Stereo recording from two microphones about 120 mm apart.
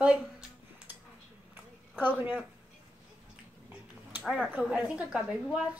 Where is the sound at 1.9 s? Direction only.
15° right (ahead or behind).